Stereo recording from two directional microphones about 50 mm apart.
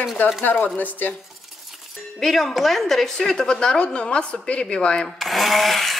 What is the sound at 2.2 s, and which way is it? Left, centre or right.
A woman's voice, centre.